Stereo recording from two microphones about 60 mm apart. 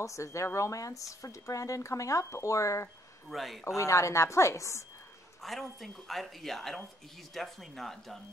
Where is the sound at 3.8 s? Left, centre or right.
Left.